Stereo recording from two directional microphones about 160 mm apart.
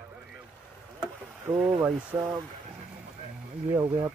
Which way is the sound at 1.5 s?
10° right (ahead or behind).